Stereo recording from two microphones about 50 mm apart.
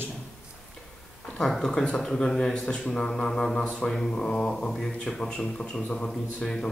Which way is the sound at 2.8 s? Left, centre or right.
Centre.